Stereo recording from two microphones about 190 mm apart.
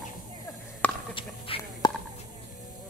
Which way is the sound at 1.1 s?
25° left (ahead or behind).